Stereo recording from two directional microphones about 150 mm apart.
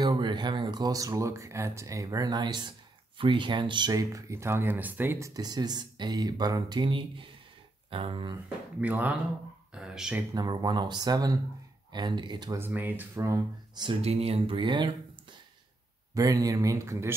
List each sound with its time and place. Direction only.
0.0 s speech: 30° right (ahead or behind)
8.8 s speech: 10° right (ahead or behind)
10.3 s speech: 25° right (ahead or behind)
12.5 s speech: 15° right (ahead or behind)
13.8 s speech: 40° right (ahead or behind)
16.2 s speech: 25° right (ahead or behind)